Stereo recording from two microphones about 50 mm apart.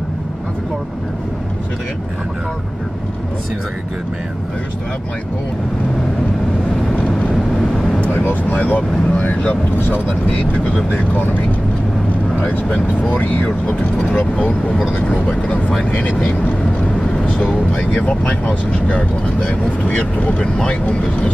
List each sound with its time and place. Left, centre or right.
8.0 s speech: left
9.0 s speech: left
9.8 s speech: left
12.4 s speech: left
17.7 s speech: left